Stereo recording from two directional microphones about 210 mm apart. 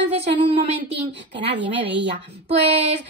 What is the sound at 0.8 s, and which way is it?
A woman's voice, 55° right (ahead or behind).